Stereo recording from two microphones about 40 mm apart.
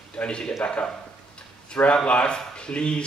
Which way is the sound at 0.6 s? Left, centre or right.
Left.